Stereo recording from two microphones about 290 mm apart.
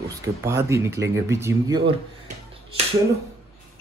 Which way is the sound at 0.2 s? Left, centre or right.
Centre.